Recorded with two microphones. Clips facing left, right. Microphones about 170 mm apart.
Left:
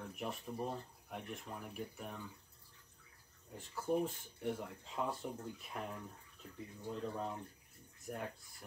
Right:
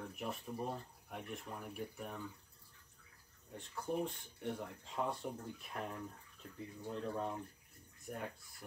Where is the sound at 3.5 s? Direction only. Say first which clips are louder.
Left 3 dB; centre (ahead or behind).